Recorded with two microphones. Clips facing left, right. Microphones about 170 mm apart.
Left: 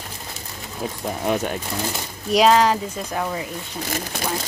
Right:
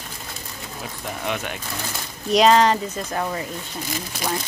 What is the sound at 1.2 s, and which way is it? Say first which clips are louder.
Speech: left 6 dB; 40° left (ahead or behind).